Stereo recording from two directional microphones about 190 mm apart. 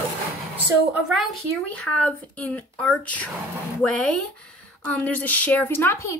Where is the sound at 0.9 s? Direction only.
5° right (ahead or behind).